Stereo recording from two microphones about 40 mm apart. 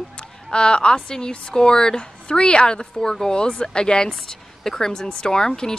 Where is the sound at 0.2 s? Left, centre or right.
Left.